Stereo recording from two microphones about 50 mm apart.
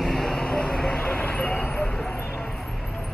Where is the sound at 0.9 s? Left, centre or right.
Left.